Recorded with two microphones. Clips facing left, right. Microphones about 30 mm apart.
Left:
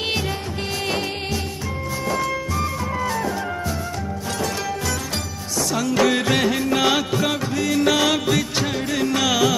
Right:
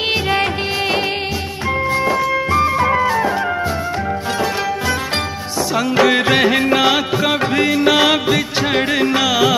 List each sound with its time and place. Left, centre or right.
2.0 s music: centre
2.3 s music: right
5.8 s music: right
6.8 s music of bollywood: right
7.7 s music: right
8.6 s music: right
9.2 s music: right